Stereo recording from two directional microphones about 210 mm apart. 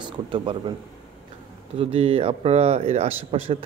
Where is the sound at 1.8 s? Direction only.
30° right (ahead or behind).